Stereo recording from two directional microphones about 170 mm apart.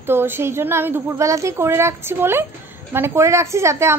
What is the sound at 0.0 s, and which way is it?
A woman's voice, 15° right (ahead or behind).